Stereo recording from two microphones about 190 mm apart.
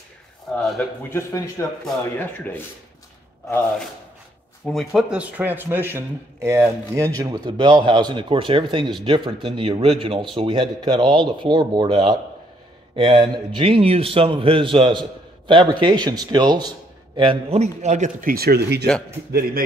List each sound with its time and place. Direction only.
0.6 s speech: 5° left (ahead or behind)
1.1 s speech: 15° left (ahead or behind)
4.6 s a man's voice: centre (ahead or behind); by 18.9 s 60° right (ahead or behind)